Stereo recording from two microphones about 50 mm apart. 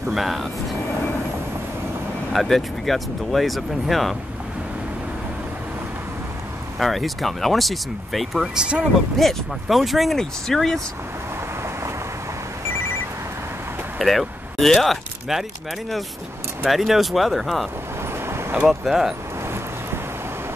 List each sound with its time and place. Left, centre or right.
0.0 s speech: centre
2.3 s speech: centre
6.8 s speech: centre
8.5 s speech: right
9.2 s speech: centre
13.9 s a sound: centre
16.6 s speech: centre
18.2 s vehicle: right
18.7 s speech: centre
19.4 s vehicle: right